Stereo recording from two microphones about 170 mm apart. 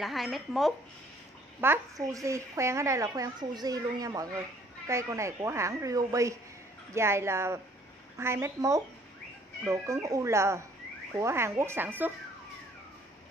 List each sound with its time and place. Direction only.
0.0 s speech: centre (ahead or behind)
1.6 s a woman's voice: 15° right (ahead or behind)